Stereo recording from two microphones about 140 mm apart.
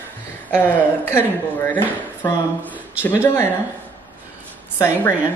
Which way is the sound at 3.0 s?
20° left (ahead or behind).